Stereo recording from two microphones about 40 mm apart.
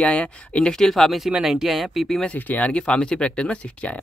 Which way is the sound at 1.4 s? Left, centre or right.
Centre.